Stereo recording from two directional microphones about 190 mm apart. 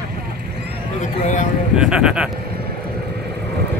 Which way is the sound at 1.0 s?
40° left (ahead or behind).